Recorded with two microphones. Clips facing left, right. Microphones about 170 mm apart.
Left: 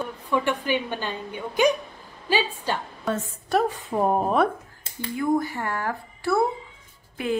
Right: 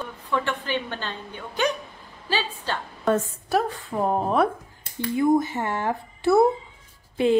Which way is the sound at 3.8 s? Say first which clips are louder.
Left 2 dB; 20° left (ahead or behind).